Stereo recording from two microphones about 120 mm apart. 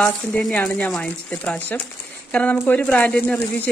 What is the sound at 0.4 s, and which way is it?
Speech, 10° left (ahead or behind).